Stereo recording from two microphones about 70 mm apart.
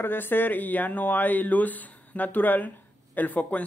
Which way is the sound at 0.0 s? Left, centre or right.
Left.